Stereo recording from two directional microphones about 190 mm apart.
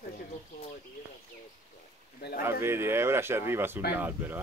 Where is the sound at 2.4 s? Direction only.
15° right (ahead or behind).